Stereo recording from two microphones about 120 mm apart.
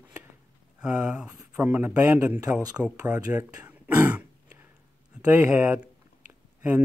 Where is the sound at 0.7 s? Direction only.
10° right (ahead or behind).